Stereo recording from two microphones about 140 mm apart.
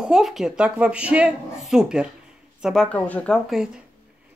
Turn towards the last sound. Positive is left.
turn(degrees=5)  # may be behind; listen again after turning